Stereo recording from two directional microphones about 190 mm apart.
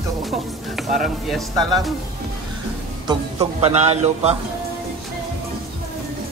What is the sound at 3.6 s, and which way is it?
Speech, 35° right (ahead or behind).